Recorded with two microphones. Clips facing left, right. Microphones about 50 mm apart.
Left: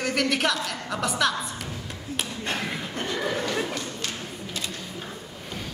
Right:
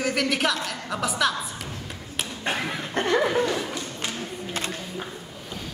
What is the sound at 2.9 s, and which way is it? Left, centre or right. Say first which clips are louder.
Chuckle: right 11 dB; right.